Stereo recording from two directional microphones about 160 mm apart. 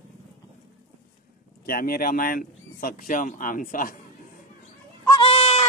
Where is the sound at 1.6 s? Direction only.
65° left (ahead or behind).